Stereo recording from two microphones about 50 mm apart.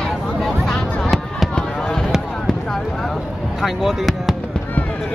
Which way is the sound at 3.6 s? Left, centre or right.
Centre.